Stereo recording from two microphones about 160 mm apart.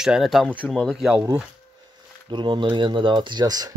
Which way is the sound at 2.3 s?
30° right (ahead or behind).